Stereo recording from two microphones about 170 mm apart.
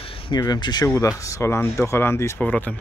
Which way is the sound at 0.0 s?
30° left (ahead or behind).